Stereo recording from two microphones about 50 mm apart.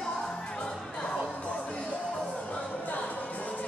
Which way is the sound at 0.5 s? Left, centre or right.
Centre.